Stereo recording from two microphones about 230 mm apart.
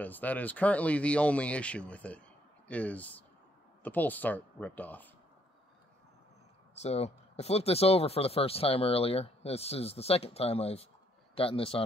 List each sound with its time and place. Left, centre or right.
0.0 s speech: centre
6.8 s speech: left